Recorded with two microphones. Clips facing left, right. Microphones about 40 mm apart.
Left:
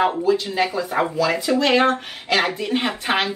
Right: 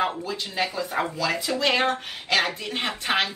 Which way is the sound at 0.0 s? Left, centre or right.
Centre.